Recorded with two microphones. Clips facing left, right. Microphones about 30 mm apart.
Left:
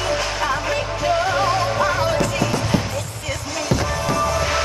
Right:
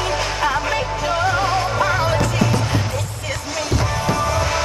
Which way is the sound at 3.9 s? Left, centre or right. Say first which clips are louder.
Even; centre.